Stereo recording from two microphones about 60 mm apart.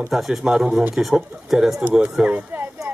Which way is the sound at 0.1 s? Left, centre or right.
Centre.